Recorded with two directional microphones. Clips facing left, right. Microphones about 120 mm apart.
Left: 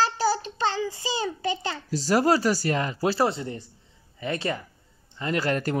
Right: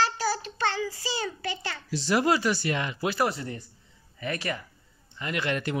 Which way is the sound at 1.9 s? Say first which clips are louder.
Left 3 dB; 40° left (ahead or behind).